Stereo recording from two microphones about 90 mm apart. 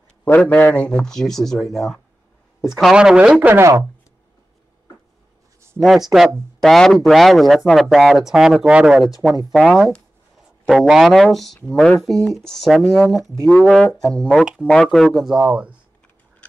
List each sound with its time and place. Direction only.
0.2 s a man's voice: 20° left (ahead or behind); by 3.3 s 10° right (ahead or behind)
3.3 s speech: 25° right (ahead or behind)
5.6 s a sound: 30° right (ahead or behind)
6.6 s a man's voice: 5° left (ahead or behind); by 15.8 s 15° right (ahead or behind)